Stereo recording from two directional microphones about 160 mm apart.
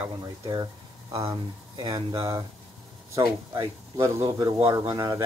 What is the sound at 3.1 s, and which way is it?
Speech, 20° right (ahead or behind).